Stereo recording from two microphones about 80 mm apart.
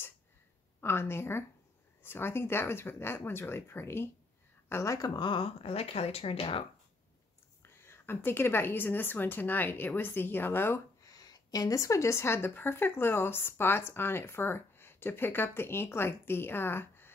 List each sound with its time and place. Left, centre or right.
0.7 s a woman's voice: left
4.9 s speech: left
5.2 s speech: left
7.6 s a woman's voice: left
11.0 s a woman's voice: left